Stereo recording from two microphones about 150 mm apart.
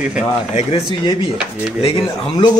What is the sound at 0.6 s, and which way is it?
Speech, 40° left (ahead or behind).